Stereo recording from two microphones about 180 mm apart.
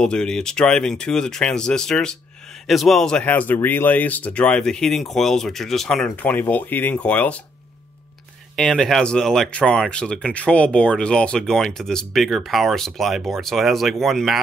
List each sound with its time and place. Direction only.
0.0 s speech: 5° left (ahead or behind)
8.5 s speech: centre (ahead or behind)